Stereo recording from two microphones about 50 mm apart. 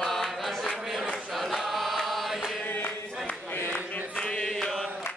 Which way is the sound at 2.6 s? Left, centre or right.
Left.